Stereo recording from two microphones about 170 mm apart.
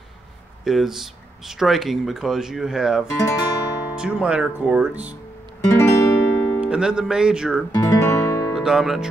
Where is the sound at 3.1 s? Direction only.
20° left (ahead or behind).